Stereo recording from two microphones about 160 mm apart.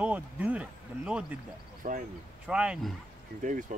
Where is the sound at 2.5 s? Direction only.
5° right (ahead or behind).